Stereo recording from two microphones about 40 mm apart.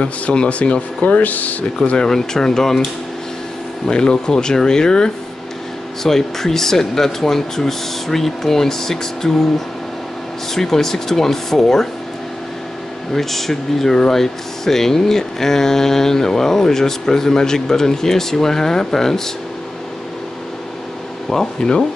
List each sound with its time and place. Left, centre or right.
0.0 s speech: left
2.0 s speech: centre
10.5 s speech: centre
13.1 s speech: centre
21.3 s speech: centre